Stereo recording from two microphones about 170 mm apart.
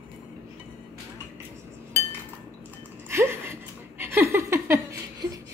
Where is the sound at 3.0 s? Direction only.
15° right (ahead or behind).